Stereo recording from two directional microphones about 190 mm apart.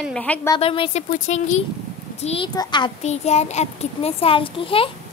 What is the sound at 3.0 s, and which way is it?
A child's voice, 35° left (ahead or behind).